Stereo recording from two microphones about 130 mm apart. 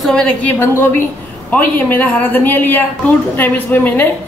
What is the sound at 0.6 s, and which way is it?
A woman's voice, 20° left (ahead or behind).